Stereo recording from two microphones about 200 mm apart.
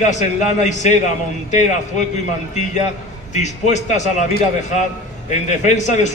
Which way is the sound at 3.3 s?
35° left (ahead or behind).